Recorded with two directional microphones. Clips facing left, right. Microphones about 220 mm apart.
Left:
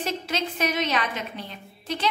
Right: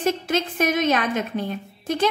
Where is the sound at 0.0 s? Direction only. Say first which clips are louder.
Right 6 dB; 50° right (ahead or behind).